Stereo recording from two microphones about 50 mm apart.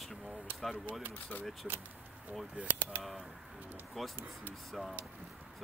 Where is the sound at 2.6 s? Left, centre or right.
Right.